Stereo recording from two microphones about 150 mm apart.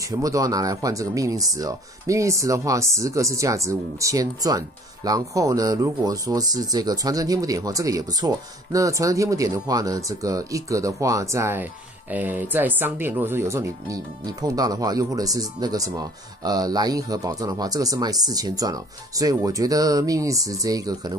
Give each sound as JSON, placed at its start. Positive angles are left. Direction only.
{"t": 0.0, "sound": "speech", "side_deg": -20}